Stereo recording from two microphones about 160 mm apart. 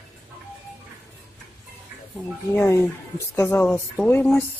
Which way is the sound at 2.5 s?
15° left (ahead or behind).